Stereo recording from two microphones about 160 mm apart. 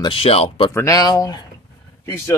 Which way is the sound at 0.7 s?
20° left (ahead or behind).